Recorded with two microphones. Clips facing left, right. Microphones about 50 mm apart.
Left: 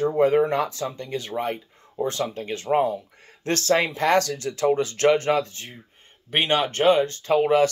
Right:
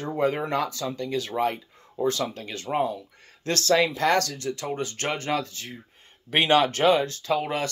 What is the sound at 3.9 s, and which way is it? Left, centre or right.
Speech, left.